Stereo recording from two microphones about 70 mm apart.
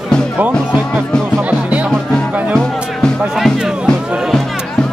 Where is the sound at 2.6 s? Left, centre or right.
Centre.